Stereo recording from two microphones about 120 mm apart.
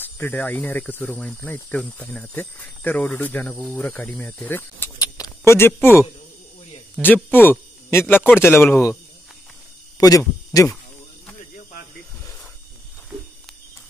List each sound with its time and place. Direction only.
0.0 s speech: 15° left (ahead or behind)
4.9 s a sound: 30° left (ahead or behind)
7.2 s speech: 15° left (ahead or behind)
9.9 s speech: 30° left (ahead or behind)